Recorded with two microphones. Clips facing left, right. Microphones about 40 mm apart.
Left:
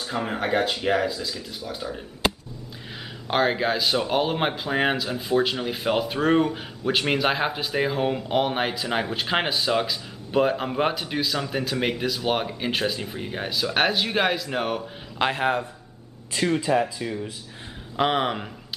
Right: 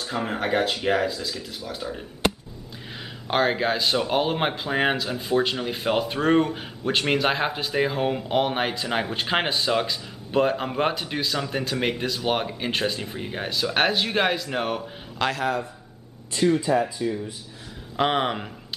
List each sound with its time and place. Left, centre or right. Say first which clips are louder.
0.0 s speech: even; centre
3.3 s speech: even; centre
15.1 s speech: left 2 dB; left
16.4 s speech: right 1 dB; centre
17.9 s speech: even; centre